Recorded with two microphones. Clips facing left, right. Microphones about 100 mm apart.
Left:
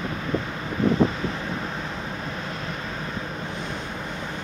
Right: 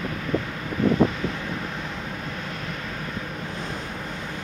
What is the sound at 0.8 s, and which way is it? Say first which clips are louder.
Wind: even; 25° left (ahead or behind).